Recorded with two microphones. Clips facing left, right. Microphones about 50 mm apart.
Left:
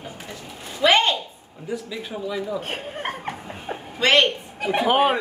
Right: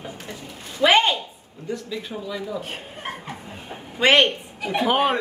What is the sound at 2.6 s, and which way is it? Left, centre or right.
Speech, left.